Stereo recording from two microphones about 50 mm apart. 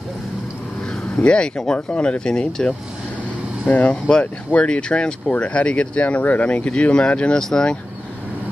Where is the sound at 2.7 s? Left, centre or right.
Right.